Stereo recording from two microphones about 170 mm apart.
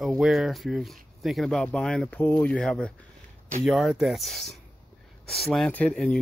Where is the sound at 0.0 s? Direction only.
Centre (ahead or behind).